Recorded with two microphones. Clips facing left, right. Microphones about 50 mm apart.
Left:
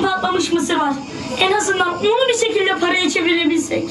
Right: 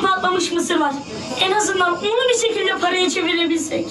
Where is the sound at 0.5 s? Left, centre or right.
Centre.